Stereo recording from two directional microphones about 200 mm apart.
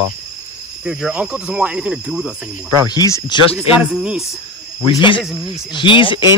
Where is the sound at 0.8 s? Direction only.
5° right (ahead or behind).